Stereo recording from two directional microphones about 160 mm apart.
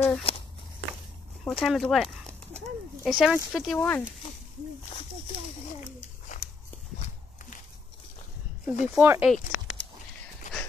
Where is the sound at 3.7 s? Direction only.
15° left (ahead or behind).